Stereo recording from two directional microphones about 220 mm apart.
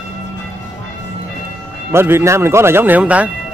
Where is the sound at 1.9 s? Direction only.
10° right (ahead or behind).